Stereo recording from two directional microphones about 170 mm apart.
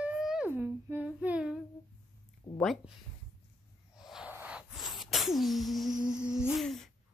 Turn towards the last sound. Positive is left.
turn(degrees=0)  # may be behind; listen again after turning